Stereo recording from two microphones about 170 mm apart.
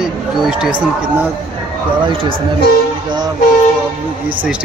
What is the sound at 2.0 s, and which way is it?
Speech, 30° right (ahead or behind).